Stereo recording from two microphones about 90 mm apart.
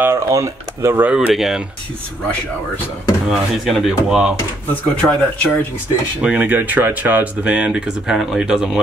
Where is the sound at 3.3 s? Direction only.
5° right (ahead or behind).